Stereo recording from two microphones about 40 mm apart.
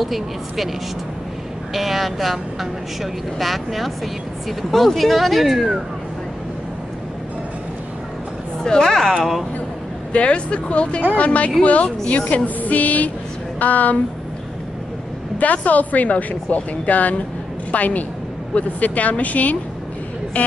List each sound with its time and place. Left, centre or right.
0.0 s a woman's voice: centre
1.7 s a woman's voice: centre
8.6 s a woman's voice: centre
9.2 s a woman's voice: centre
10.1 s speech: left
12.4 s music: left
13.6 s speech: left
15.3 s a woman's voice: left